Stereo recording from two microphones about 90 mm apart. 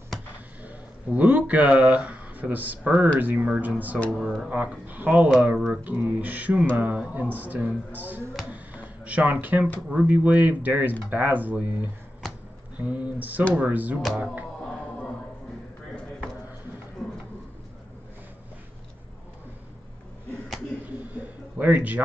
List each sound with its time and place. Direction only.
0.6 s speech: 15° right (ahead or behind)
4.2 s speech: 5° right (ahead or behind)
4.5 s speech: 20° right (ahead or behind)
14.0 s speech: 5° right (ahead or behind)
21.1 s a sound: 20° right (ahead or behind)